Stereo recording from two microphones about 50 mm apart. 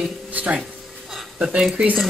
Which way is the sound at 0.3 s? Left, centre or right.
Right.